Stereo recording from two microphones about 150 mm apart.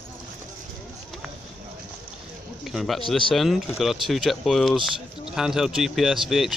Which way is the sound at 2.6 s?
Centre (ahead or behind).